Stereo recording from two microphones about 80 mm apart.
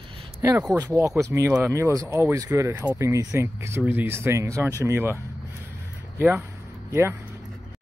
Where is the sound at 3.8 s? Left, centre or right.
Right.